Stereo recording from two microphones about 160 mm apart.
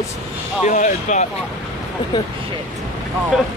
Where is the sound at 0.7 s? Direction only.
50° left (ahead or behind).